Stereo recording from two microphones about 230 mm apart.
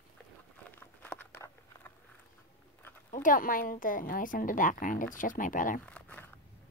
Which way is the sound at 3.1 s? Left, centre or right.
Left.